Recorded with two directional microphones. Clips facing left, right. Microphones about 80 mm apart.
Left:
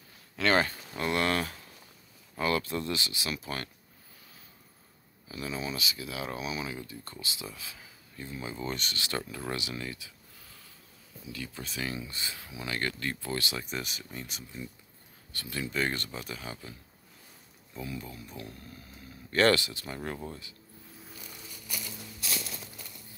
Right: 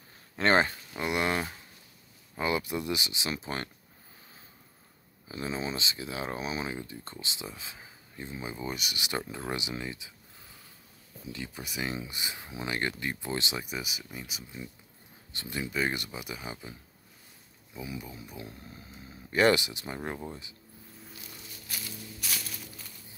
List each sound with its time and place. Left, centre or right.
0.4 s speech: right
5.3 s speech: right
13.7 s speech: centre
15.3 s speech: right
17.7 s speech: centre